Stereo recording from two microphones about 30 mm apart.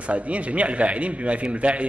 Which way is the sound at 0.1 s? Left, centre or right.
Right.